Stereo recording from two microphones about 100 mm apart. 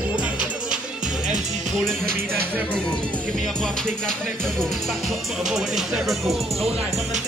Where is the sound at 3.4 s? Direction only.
5° left (ahead or behind).